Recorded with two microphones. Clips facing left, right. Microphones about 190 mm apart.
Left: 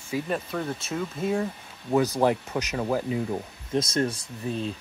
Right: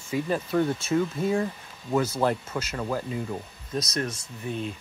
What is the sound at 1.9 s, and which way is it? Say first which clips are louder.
Speech: left 2 dB; 15° left (ahead or behind).